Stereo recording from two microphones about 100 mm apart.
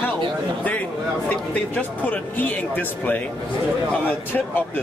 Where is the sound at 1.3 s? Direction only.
15° left (ahead or behind).